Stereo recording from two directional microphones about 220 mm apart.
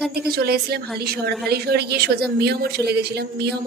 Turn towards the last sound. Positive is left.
turn(degrees=-50)  # may be behind; listen again after turning